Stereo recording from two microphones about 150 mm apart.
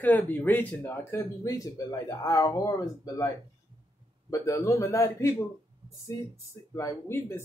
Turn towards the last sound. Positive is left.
turn(degrees=15)  # may be behind; listen again after turning